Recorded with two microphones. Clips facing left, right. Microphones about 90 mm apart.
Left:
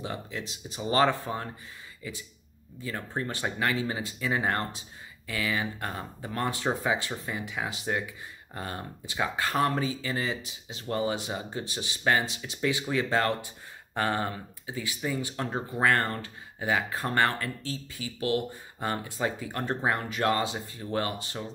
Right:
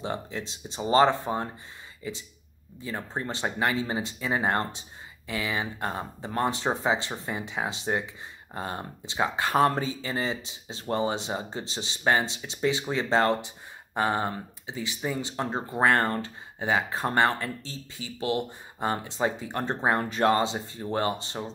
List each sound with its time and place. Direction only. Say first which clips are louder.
0.0 s speech: right 3 dB; 30° right (ahead or behind)
2.8 s speech: even; 20° right (ahead or behind)